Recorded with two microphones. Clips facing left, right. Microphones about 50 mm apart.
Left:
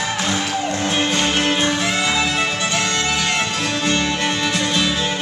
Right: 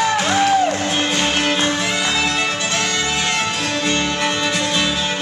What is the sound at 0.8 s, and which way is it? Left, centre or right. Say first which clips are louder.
Music: even; centre.